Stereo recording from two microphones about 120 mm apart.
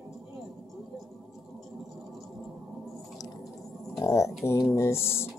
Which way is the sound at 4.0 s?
25° left (ahead or behind).